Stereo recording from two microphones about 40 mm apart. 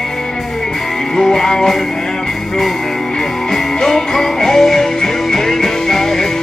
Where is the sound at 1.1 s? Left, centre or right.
Centre.